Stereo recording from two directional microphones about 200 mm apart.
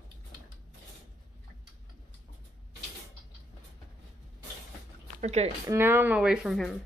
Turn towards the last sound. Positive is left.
turn(degrees=0)  # may be behind; listen again after turning